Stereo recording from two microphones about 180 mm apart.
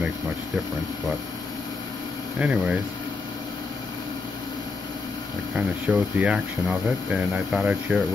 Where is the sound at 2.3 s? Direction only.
10° right (ahead or behind).